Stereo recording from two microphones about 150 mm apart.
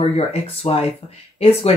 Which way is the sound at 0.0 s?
45° left (ahead or behind).